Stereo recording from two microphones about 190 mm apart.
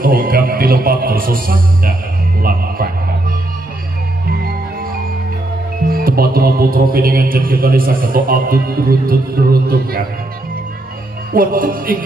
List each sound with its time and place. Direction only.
0.0 s a man's voice: 50° right (ahead or behind)
5.9 s speech: 50° right (ahead or behind)
11.3 s speech: 50° right (ahead or behind)